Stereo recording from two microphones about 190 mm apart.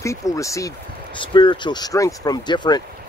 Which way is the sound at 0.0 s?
15° left (ahead or behind).